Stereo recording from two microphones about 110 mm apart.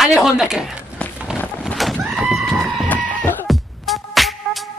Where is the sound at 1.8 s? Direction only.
Centre (ahead or behind).